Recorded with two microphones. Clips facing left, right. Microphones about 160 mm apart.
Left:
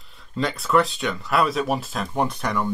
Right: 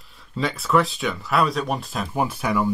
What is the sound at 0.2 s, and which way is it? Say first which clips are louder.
Speech: even; centre (ahead or behind).